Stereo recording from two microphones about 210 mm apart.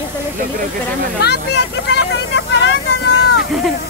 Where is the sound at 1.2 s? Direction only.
50° left (ahead or behind).